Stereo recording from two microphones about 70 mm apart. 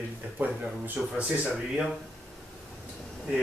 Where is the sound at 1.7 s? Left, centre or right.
Centre.